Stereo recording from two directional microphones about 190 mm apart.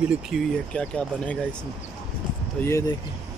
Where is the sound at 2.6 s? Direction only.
15° left (ahead or behind).